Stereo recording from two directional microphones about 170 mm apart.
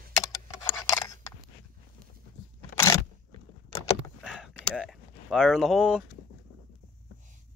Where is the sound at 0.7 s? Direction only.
20° left (ahead or behind).